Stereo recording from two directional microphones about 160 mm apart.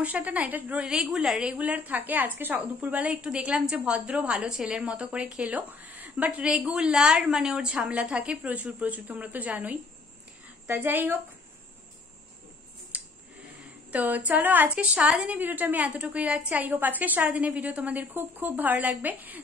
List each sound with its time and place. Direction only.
0.0 s a woman's voice: 10° right (ahead or behind)
12.9 s a sound: 10° right (ahead or behind)
13.9 s a woman's voice: 10° right (ahead or behind)